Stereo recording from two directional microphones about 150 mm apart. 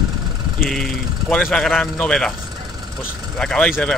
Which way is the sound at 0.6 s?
Centre (ahead or behind).